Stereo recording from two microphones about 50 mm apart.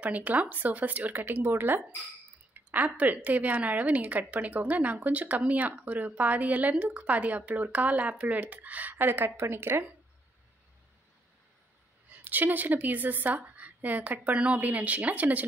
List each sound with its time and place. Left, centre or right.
0.0 s speech: right
2.5 s speech: right
8.9 s a woman's voice: right
12.1 s a woman's voice: right